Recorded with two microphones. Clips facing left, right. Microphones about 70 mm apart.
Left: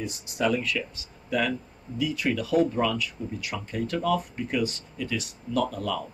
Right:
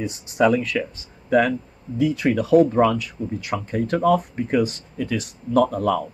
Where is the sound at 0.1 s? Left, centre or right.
Right.